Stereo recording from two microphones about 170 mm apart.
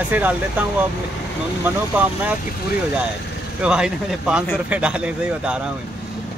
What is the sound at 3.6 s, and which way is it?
Speech, 5° right (ahead or behind).